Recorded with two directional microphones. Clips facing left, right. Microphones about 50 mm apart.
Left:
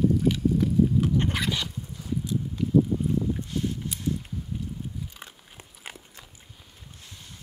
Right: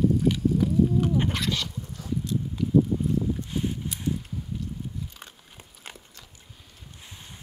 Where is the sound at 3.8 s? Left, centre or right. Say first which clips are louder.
Even; centre.